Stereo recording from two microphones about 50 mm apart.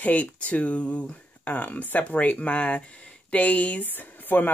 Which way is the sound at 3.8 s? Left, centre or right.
Left.